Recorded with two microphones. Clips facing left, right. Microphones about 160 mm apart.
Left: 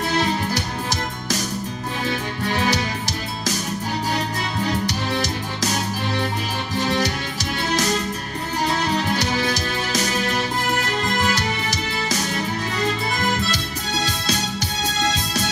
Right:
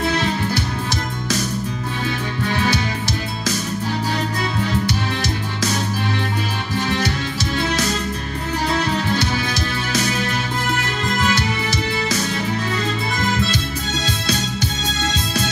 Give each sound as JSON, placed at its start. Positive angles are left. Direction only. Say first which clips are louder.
{"t": 2.4, "sound": "music", "louder": "right 1 dB", "side_deg": 40}
{"t": 4.8, "sound": "music", "louder": "right 1 dB", "side_deg": 40}
{"t": 9.2, "sound": "music", "louder": "even", "side_deg": 40}
{"t": 11.2, "sound": "music", "louder": "right 2 dB", "side_deg": 40}